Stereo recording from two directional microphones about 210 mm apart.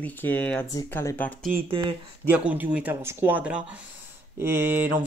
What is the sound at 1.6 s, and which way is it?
Speech, 25° right (ahead or behind).